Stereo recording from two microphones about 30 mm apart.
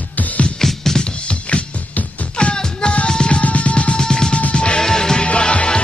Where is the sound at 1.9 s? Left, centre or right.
Left.